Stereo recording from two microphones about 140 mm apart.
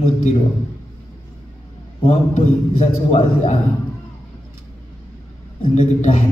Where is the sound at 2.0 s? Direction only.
50° left (ahead or behind).